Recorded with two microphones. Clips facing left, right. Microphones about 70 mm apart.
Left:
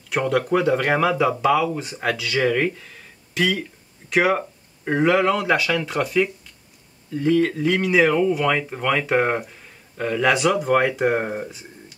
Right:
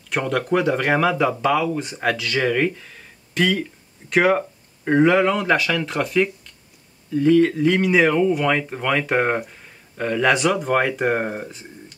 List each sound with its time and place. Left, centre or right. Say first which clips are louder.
0.1 s speech: left 1 dB; centre